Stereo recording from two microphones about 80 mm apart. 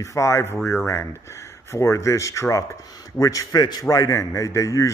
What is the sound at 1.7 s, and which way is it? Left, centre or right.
A man's voice, left.